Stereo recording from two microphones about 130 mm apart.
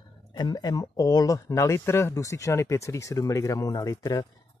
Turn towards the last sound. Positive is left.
turn(degrees=25)  # may be behind; listen again after turning